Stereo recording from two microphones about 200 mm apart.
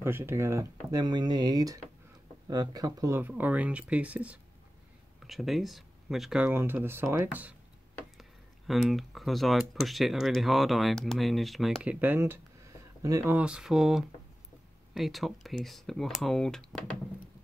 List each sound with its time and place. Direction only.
0.0 s speech: 10° right (ahead or behind)